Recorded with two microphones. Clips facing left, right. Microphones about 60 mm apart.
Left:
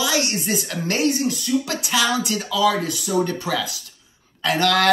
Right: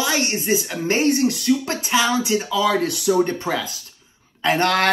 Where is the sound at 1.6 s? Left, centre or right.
Right.